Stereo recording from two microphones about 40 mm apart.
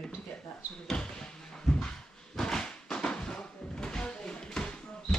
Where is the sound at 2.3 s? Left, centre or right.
Centre.